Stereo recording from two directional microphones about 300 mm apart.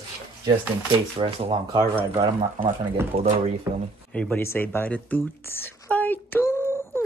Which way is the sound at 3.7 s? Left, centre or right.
Centre.